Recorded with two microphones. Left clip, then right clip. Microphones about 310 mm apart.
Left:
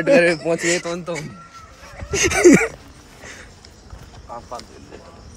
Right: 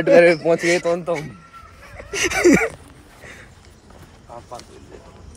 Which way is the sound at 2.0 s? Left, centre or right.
Centre.